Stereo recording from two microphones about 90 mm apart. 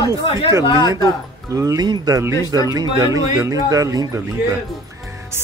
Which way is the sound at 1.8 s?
50° right (ahead or behind).